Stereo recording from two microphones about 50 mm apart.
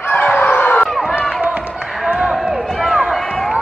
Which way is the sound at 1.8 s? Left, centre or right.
Centre.